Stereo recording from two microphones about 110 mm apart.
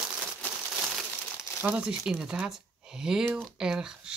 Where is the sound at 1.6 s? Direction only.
15° right (ahead or behind).